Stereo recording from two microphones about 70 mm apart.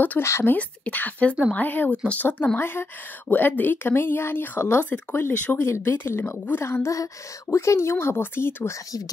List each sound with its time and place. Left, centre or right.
0.2 s speech: left
0.5 s speech: left